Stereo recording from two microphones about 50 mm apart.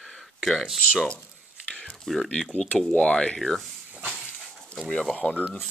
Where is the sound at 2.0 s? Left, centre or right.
Centre.